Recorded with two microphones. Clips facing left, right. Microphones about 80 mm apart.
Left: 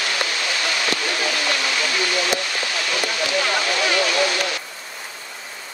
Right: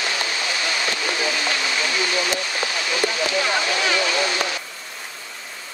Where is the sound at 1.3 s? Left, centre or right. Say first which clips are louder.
Left 1 dB; centre.